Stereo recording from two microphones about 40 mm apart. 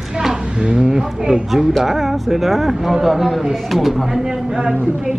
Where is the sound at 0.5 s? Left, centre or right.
Right.